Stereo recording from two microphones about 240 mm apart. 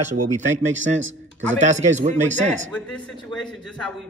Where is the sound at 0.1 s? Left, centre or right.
Right.